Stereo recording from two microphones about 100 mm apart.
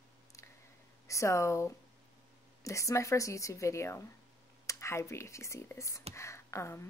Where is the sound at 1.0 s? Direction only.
30° left (ahead or behind).